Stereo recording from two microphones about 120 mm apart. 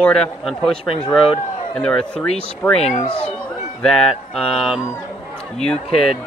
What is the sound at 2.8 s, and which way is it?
Speech, 90° left.